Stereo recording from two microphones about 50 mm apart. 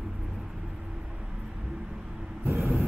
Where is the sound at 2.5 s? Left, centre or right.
Right.